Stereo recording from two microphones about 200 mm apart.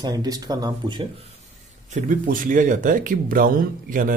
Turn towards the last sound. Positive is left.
turn(degrees=-40)  # may be behind; listen again after turning